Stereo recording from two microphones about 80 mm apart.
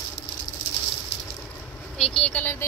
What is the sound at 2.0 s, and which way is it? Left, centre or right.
Vehicle, centre.